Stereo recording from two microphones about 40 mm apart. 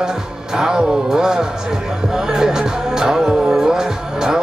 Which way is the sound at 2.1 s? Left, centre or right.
Centre.